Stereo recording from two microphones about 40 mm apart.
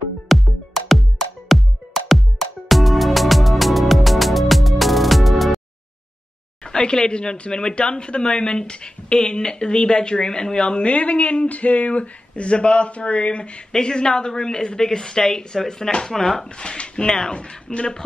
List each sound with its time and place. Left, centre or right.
0.3 s music: centre
6.6 s speech: centre
10.9 s speech: left